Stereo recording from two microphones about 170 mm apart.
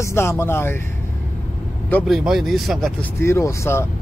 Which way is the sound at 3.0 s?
15° left (ahead or behind).